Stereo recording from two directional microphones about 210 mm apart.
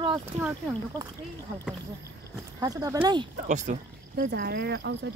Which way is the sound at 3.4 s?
35° right (ahead or behind).